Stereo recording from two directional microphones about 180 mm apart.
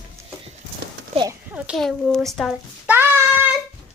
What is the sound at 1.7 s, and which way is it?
Speech, centre (ahead or behind).